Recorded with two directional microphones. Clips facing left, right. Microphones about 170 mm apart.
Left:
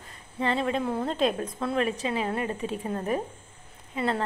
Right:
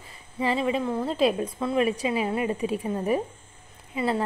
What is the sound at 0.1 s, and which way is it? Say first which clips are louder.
A woman's voice: right 1 dB; 5° right (ahead or behind).